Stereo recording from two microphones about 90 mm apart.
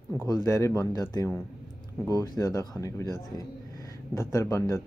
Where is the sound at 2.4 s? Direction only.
40° left (ahead or behind).